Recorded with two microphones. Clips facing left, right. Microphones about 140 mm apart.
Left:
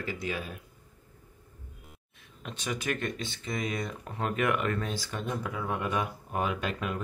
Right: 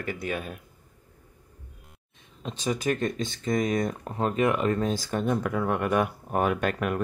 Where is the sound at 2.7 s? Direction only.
40° right (ahead or behind).